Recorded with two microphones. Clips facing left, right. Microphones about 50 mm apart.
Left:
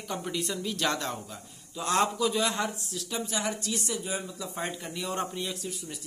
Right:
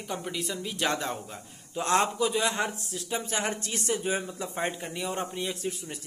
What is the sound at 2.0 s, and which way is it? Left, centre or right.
Speech, right.